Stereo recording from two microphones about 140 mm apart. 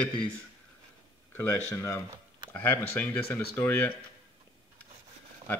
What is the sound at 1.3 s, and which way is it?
Speech, 20° left (ahead or behind).